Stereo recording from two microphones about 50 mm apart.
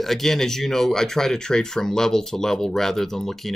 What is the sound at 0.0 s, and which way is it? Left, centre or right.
Speech, centre.